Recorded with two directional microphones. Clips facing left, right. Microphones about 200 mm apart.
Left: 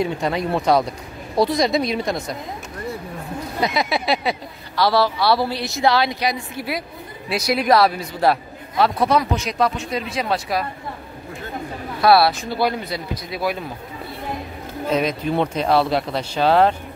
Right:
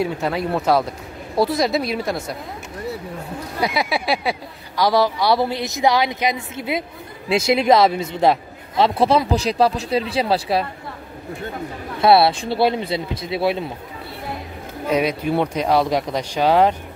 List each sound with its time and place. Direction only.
0.0 s a woman's voice: 5° right (ahead or behind)
3.6 s a man's voice: 10° right (ahead or behind); by 10.7 s 30° right (ahead or behind)
12.0 s a man's voice: 25° right (ahead or behind)
14.9 s speech: 10° right (ahead or behind)